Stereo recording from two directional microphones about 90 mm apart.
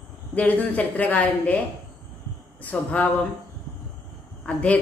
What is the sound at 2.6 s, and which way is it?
Speech, 20° left (ahead or behind).